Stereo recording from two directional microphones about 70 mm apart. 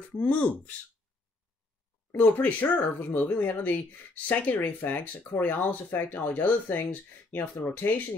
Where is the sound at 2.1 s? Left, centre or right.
Left.